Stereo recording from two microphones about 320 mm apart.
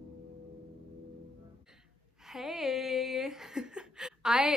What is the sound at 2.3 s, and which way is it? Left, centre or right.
A woman's voice, centre.